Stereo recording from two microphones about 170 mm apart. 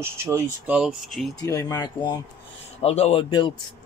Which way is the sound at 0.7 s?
5° right (ahead or behind).